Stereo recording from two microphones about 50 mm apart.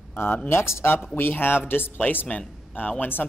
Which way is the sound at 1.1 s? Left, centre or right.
Left.